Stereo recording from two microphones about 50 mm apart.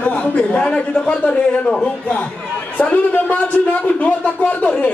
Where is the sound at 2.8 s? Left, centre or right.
Left.